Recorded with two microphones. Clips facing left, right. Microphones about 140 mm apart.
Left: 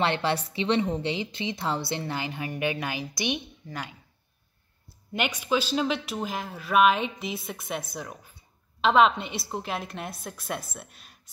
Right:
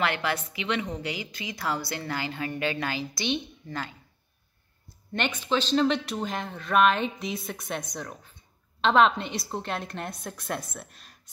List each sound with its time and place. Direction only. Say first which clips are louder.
0.0 s a woman's voice: left 2 dB; 30° left (ahead or behind); by 3.9 s 15° left (ahead or behind)
5.1 s speech: left 1 dB; 10° left (ahead or behind)